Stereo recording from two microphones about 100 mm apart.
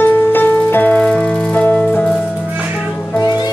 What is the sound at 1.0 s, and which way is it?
Music, 5° left (ahead or behind).